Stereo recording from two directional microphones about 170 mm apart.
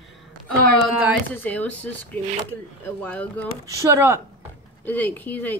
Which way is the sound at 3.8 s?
15° right (ahead or behind).